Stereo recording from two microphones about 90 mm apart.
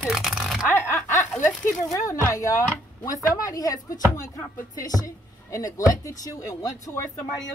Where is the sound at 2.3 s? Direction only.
35° left (ahead or behind).